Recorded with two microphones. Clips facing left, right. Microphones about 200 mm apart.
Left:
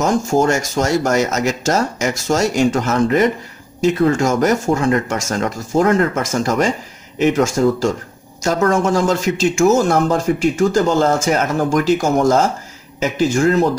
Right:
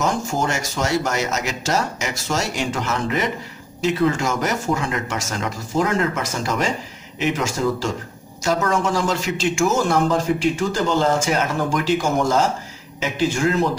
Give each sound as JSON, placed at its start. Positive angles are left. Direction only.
{"t": 0.0, "sound": "speech", "side_deg": 45}